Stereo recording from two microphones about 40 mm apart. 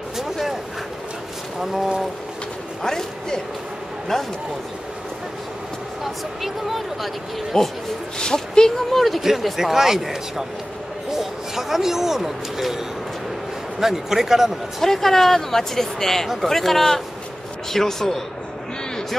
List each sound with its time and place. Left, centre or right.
0.2 s vehicle: centre
2.8 s speech: centre
6.4 s speech: centre
7.5 s speech: centre
8.9 s speech: centre
9.2 s speech: centre
14.8 s speech: centre